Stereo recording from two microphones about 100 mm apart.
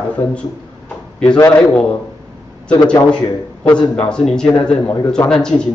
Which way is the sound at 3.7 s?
10° left (ahead or behind).